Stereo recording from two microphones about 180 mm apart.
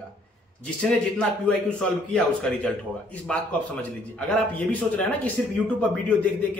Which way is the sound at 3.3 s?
5° left (ahead or behind).